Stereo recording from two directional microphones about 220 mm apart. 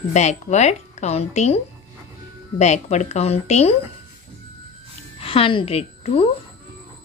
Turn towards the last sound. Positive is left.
turn(degrees=25)  # may be behind; listen again after turning